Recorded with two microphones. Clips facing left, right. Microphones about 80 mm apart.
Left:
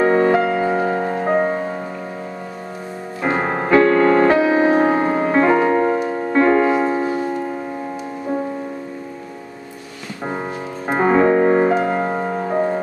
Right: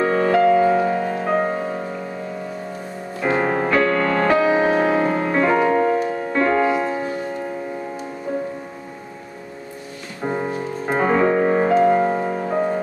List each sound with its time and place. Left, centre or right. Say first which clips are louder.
0.0 s music: left 1 dB; left
1.1 s music: left 2 dB; centre
3.2 s music: right 1 dB; centre
10.2 s music: right 2 dB; centre